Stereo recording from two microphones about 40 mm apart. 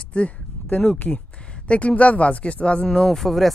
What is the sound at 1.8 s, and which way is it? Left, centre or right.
Speech, left.